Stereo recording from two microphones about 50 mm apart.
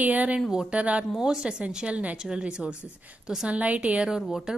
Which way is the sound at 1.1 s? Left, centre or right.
Centre.